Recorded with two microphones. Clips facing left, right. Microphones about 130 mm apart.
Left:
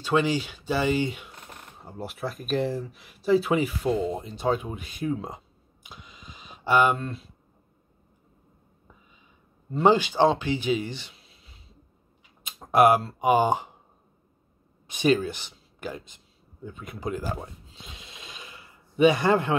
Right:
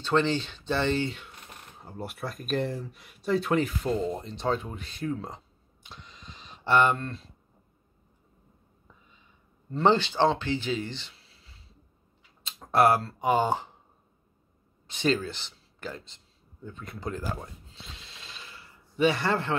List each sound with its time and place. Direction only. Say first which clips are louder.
0.0 s speech: left 1 dB; 10° left (ahead or behind)
1.8 s speech: left 3 dB; centre (ahead or behind)
5.9 s a sound: left 1 dB; 10° left (ahead or behind)
9.7 s speech: left 3 dB; 10° left (ahead or behind)
14.9 s speech: left 4 dB; 15° left (ahead or behind)
16.6 s a sound: left 3 dB; 10° left (ahead or behind)